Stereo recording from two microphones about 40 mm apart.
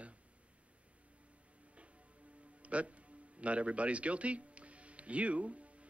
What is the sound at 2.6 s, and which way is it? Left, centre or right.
Music, right.